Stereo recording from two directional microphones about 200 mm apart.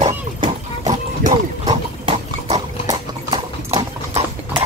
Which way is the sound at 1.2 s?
30° right (ahead or behind).